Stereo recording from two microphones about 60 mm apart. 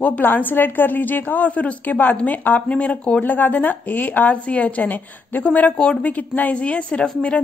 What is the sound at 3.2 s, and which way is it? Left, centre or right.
A woman's voice, left.